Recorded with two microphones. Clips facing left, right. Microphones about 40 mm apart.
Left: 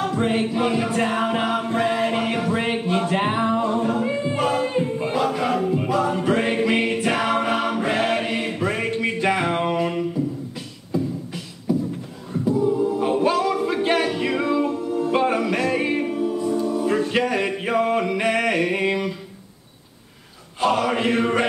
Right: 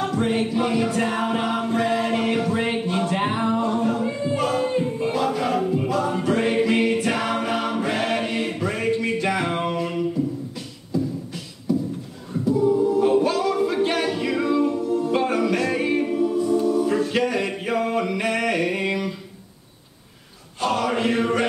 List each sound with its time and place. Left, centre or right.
0.1 s music: centre
7.4 s choir: centre
9.0 s music: centre
11.7 s a sound: centre
12.5 s a capella: centre
16.9 s a sound: centre
20.6 s chant: centre